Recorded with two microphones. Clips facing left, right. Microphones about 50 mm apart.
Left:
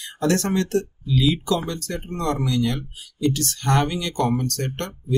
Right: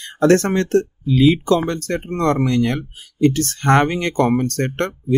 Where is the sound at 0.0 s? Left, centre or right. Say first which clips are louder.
Right 8 dB; right.